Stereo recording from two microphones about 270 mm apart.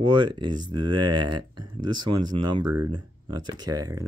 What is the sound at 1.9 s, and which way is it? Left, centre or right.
Speech, right.